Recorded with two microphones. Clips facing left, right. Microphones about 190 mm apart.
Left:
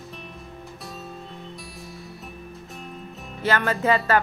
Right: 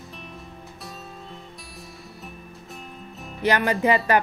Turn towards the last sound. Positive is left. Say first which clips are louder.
# right 1 dB
turn(degrees=-15)  # may be behind; listen again after turning